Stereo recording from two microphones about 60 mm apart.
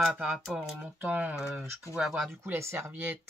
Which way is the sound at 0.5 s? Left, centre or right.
Centre.